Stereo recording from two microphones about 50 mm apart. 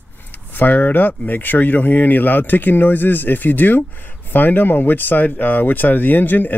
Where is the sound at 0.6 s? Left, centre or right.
Left.